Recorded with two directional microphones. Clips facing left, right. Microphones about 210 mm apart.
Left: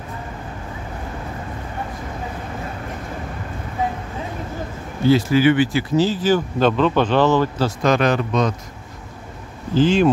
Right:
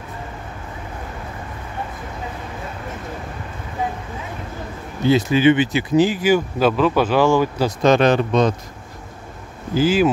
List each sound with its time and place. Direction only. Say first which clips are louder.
5.0 s speech: even; 20° right (ahead or behind)
7.8 s speech: right 4 dB; 25° right (ahead or behind)
9.8 s speech: left 1 dB; 5° right (ahead or behind)